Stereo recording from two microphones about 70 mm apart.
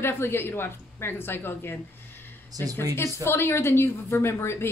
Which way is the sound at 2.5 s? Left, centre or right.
Right.